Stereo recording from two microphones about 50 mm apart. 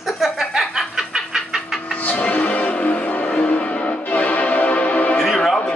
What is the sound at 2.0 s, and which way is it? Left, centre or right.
Music, left.